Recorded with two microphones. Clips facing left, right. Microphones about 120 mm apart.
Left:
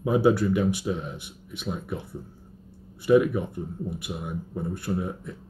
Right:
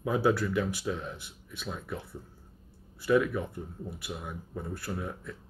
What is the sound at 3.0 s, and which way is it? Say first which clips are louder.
Speech: left 6 dB; 20° left (ahead or behind).